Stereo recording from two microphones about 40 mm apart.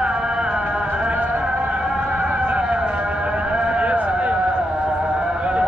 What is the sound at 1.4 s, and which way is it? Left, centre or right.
Music, right.